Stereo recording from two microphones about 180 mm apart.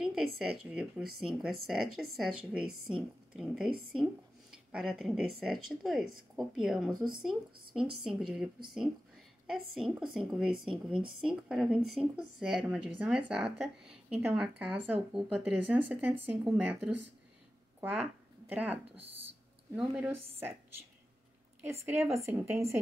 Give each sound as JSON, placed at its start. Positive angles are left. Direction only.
{"t": 0.4, "sound": "speech", "side_deg": -5}
{"t": 4.7, "sound": "speech", "side_deg": -5}
{"t": 22.0, "sound": "speech", "side_deg": -5}